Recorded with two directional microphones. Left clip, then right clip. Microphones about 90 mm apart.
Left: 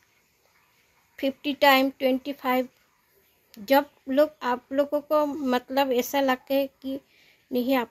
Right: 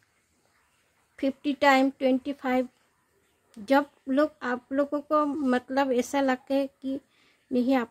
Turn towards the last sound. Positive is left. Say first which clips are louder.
# left 1 dB
turn(degrees=-45)  # may be behind; listen again after turning